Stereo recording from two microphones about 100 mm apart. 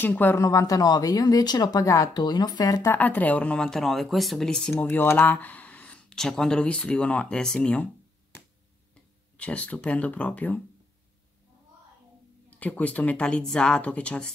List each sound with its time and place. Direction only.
0.0 s speech: 20° left (ahead or behind)
0.4 s speech: 35° left (ahead or behind)
2.8 s speech: 20° left (ahead or behind)
4.8 s speech: 20° left (ahead or behind)
9.4 s speech: 15° left (ahead or behind)
12.4 s speech: 15° left (ahead or behind)